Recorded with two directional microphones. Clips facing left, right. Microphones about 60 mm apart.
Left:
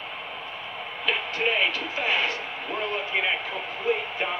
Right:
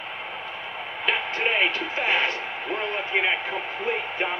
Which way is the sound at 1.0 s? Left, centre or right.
Right.